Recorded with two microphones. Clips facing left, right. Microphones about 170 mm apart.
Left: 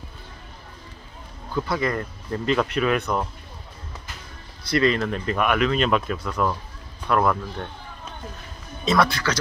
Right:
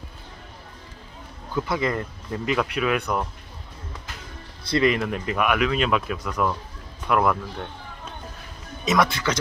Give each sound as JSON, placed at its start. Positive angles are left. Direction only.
{"t": 1.5, "sound": "speech", "side_deg": -15}
{"t": 4.6, "sound": "speech", "side_deg": -20}
{"t": 8.8, "sound": "speech", "side_deg": -15}